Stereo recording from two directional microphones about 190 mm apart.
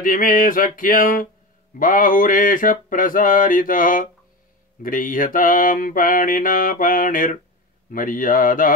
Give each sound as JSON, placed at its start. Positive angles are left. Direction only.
{"t": 0.0, "sound": "mantra", "side_deg": 45}